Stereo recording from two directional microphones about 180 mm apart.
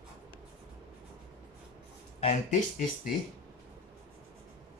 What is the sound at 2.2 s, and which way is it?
Speech, 40° left (ahead or behind).